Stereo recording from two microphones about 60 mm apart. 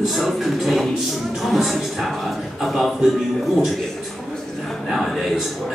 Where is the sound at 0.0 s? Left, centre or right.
Centre.